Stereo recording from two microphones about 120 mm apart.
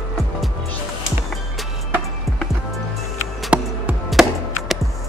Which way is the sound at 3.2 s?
10° right (ahead or behind).